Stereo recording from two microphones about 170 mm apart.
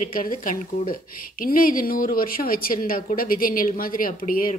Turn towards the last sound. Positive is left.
turn(degrees=55)  # may be behind; listen again after turning